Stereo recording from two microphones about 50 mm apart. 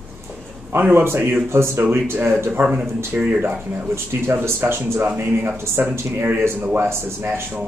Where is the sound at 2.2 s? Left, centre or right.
Right.